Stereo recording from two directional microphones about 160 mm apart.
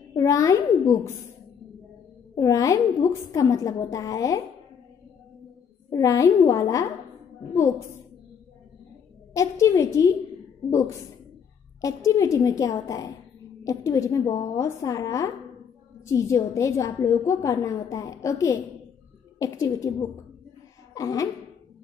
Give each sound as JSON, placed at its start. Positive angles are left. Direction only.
{"t": 0.1, "sound": "a woman's voice", "side_deg": 20}
{"t": 2.3, "sound": "a woman's voice", "side_deg": 20}
{"t": 5.9, "sound": "a woman's voice", "side_deg": 20}
{"t": 9.3, "sound": "a woman's voice", "side_deg": 20}
{"t": 11.8, "sound": "a woman's voice", "side_deg": 20}
{"t": 20.9, "sound": "a sound", "side_deg": 20}